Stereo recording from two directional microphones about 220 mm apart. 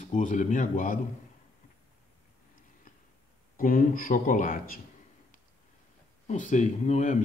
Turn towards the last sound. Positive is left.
turn(degrees=30)  # may be behind; listen again after turning